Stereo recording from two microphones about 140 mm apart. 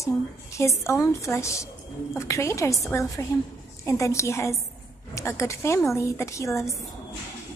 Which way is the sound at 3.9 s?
20° left (ahead or behind).